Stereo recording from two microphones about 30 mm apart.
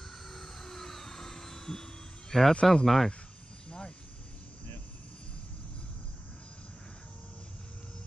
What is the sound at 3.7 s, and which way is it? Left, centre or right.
Vehicle, left.